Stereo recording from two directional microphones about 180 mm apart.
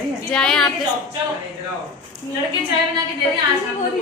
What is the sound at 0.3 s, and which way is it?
Speech, 5° left (ahead or behind).